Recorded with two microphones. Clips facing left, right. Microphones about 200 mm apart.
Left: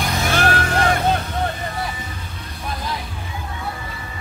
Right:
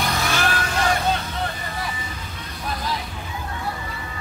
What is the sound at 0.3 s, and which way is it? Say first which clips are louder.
Music: left 4 dB; 55° left (ahead or behind).